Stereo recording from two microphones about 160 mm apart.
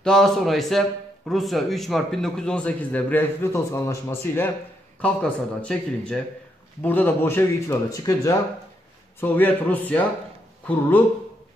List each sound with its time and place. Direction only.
0.0 s a man's voice: 5° left (ahead or behind)